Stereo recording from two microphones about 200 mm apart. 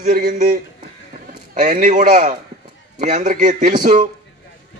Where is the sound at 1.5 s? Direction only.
40° right (ahead or behind).